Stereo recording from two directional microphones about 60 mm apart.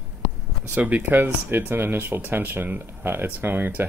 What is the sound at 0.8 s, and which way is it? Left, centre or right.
Speech, right.